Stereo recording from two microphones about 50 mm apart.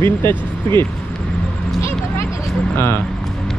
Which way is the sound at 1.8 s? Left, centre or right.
Left.